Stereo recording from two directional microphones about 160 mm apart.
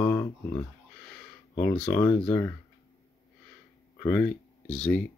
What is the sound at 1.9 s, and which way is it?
Speech, 15° left (ahead or behind).